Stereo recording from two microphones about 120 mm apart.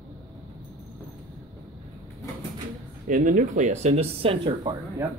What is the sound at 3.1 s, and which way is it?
Speech, 90° right.